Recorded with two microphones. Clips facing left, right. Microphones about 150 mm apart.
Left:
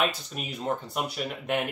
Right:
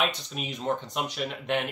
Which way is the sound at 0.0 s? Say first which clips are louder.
Left 1 dB; 5° left (ahead or behind).